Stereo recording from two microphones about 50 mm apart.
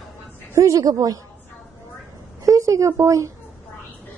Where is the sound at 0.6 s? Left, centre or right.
Right.